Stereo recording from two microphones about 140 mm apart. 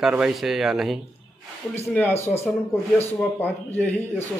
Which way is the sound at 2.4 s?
Centre (ahead or behind).